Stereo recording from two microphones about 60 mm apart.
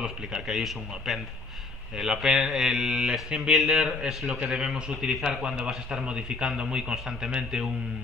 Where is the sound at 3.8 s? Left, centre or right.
Centre.